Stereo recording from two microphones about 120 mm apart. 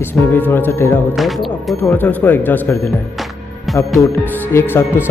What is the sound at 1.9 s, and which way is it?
Speech, 15° left (ahead or behind).